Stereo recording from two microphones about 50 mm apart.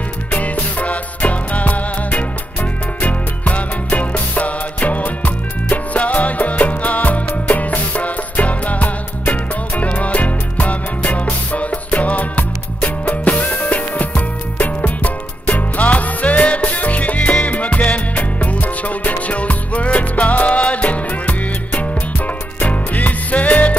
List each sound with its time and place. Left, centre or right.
0.3 s music: left